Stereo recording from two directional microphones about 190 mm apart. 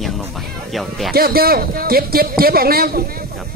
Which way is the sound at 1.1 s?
50° right (ahead or behind).